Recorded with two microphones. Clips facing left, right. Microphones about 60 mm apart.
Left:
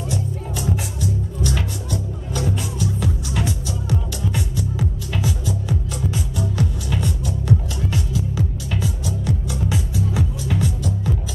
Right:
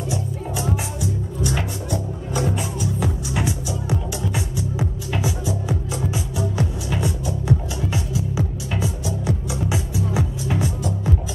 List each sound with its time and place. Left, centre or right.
0.1 s music: centre